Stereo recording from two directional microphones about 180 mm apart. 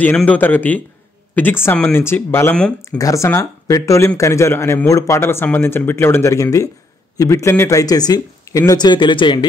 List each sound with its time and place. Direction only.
0.0 s speech: 10° left (ahead or behind)
3.0 s speech: 15° left (ahead or behind)